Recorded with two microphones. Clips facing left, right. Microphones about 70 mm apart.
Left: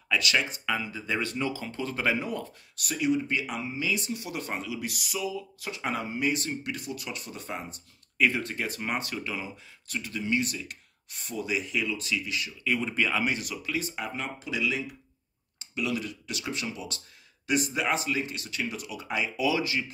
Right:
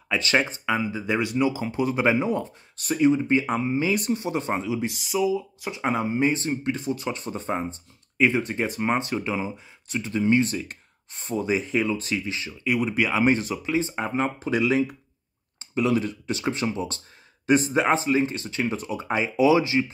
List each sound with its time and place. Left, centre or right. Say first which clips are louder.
0.1 s speech: right 4 dB; right
0.7 s speech: right 6 dB; centre
12.6 s speech: right 5 dB; centre
13.2 s speech: right 9 dB; right